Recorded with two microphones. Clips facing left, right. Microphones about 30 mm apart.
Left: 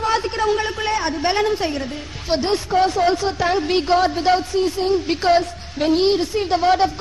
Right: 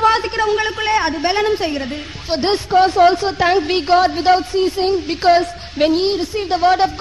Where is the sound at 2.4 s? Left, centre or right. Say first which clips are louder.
Right 5 dB; right.